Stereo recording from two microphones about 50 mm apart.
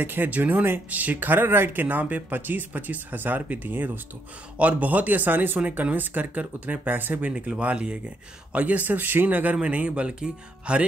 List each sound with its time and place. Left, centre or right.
0.0 s speech: right
4.6 s speech: right
5.6 s speech: right
7.2 s speech: right